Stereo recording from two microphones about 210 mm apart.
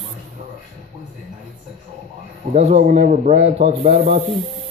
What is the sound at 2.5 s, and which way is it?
A man's voice, 30° right (ahead or behind).